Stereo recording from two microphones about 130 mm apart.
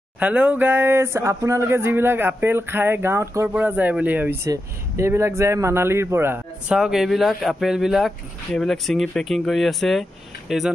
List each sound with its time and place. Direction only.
0.2 s speech: 10° right (ahead or behind)
6.7 s speech: 5° right (ahead or behind)